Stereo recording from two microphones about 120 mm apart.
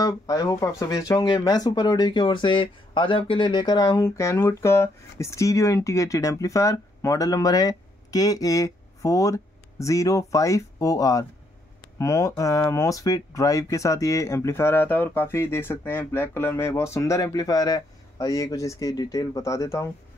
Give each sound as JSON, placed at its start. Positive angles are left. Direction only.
{"t": 0.0, "sound": "speech", "side_deg": 30}